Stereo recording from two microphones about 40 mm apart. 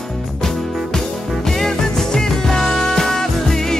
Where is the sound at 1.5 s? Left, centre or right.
Centre.